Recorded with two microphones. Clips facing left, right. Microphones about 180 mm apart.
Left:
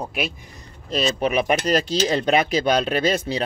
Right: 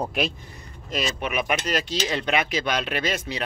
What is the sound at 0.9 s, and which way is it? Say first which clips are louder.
Speech: left 6 dB; 35° left (ahead or behind).